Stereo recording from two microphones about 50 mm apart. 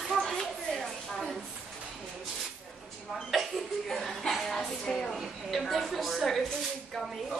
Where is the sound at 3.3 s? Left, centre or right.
Centre.